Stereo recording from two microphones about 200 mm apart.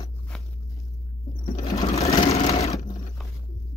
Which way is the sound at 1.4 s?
25° left (ahead or behind).